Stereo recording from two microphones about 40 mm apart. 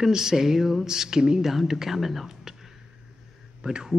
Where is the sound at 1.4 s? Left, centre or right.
Centre.